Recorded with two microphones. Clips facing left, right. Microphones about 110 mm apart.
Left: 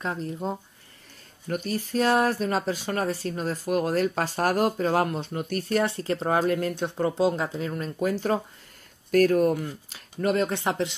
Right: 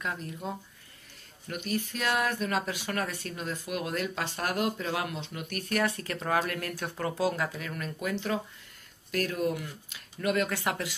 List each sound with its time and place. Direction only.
0.0 s speech: 30° left (ahead or behind)